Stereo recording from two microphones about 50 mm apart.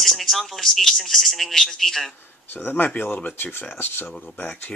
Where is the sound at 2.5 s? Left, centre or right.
Left.